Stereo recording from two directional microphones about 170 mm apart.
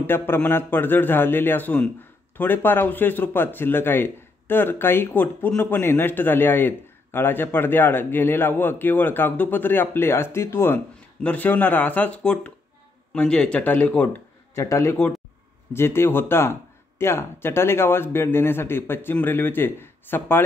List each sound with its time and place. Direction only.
0.0 s speech: 10° left (ahead or behind)